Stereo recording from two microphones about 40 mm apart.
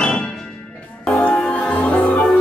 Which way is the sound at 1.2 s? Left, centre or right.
Left.